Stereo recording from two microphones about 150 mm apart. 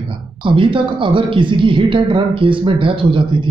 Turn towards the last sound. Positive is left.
turn(degrees=-35)  # may be behind; listen again after turning